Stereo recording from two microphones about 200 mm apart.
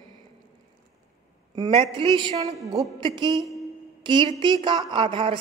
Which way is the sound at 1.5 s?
25° right (ahead or behind).